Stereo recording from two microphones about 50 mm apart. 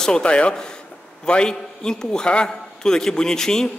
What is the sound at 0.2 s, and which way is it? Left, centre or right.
A man's voice, left.